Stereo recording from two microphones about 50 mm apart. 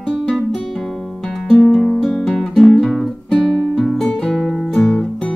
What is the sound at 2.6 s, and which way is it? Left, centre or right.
Music, centre.